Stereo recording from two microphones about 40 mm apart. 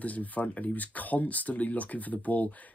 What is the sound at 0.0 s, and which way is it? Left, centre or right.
Speech, left.